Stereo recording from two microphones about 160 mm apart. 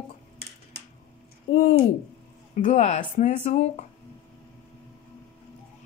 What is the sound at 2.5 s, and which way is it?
Speech, 45° left (ahead or behind).